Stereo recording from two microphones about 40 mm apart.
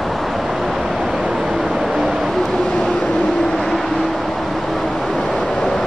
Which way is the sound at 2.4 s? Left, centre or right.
Centre.